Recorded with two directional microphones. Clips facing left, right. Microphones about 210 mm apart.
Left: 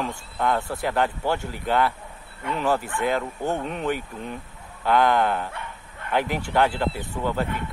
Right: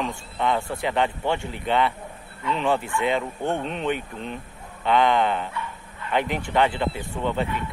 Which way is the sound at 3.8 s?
5° left (ahead or behind).